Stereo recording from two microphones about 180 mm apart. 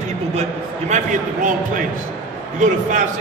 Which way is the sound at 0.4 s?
40° right (ahead or behind).